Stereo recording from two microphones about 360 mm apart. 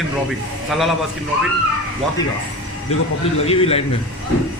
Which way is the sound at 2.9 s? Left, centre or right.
Centre.